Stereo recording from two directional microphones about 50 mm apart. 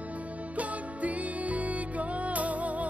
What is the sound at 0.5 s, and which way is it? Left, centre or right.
Music, right.